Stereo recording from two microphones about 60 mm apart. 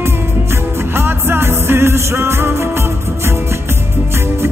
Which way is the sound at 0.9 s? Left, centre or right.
Right.